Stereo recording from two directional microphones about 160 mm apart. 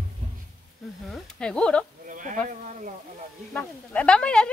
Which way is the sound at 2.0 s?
55° right (ahead or behind).